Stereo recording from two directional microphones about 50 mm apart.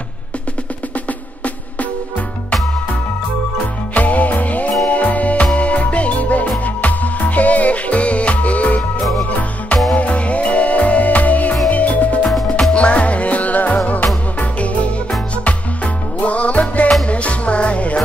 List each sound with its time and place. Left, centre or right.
3.9 s music: left